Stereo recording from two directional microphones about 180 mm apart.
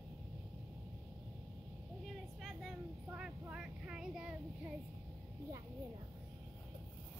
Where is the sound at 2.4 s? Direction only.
Centre (ahead or behind).